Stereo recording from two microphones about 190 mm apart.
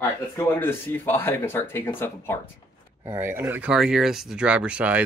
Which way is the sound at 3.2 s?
10° right (ahead or behind).